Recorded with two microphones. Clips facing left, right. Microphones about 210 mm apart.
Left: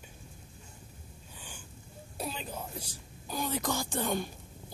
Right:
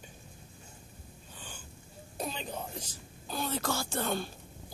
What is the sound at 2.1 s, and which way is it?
Speech, 5° left (ahead or behind).